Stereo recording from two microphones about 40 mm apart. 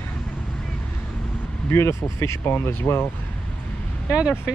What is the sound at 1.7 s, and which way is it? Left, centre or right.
Speech, left.